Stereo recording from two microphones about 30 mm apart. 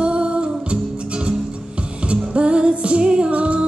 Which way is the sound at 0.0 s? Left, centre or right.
Right.